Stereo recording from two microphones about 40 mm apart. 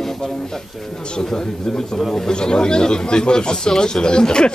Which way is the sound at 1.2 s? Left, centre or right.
Centre.